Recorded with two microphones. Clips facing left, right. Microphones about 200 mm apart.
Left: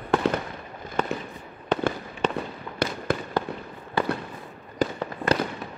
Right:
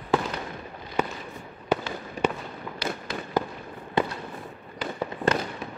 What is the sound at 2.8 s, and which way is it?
Fireworks, 50° left (ahead or behind).